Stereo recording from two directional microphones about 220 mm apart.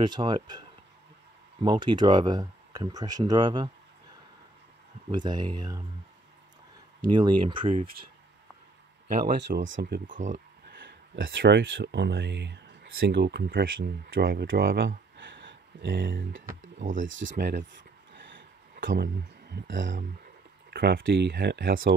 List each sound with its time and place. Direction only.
0.0 s speech: 20° right (ahead or behind)
5.1 s speech: 20° right (ahead or behind)
7.1 s speech: 20° right (ahead or behind)
9.2 s speech: 50° right (ahead or behind)
10.7 s speech: 50° right (ahead or behind)
15.1 s a sound: 55° right (ahead or behind)
16.7 s speech: 35° right (ahead or behind)
17.0 s speech: 60° right (ahead or behind)
18.1 s a sound: 55° right (ahead or behind)
19.5 s speech: 55° right (ahead or behind)